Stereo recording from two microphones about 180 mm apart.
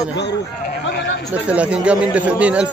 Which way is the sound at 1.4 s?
5° right (ahead or behind).